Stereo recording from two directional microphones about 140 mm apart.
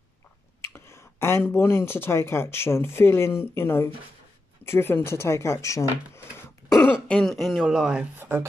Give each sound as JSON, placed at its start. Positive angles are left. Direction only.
{"t": 0.7, "sound": "a sound", "side_deg": 20}
{"t": 1.5, "sound": "speech", "side_deg": 20}
{"t": 6.8, "sound": "speech", "side_deg": 5}
{"t": 8.2, "sound": "speech", "side_deg": -15}